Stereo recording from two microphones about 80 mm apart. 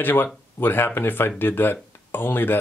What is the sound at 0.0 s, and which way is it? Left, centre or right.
Speech, left.